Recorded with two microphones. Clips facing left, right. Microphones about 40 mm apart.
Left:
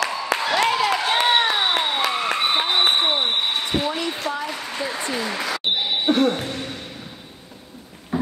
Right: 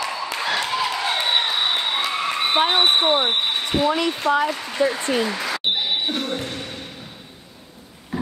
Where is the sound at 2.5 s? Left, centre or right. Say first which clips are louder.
Right 3 dB; right.